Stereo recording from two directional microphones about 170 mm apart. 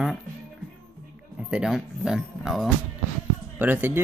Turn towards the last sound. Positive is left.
turn(degrees=-10)  # may be behind; listen again after turning